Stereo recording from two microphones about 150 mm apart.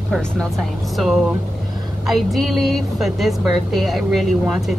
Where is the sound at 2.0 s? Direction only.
Centre (ahead or behind).